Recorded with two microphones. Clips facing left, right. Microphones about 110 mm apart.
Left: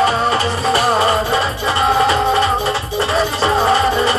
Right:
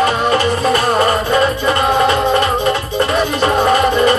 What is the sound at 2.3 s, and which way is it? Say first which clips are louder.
Music: right 2 dB; centre (ahead or behind).